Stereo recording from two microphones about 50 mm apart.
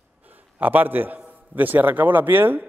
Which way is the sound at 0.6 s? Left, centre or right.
Right.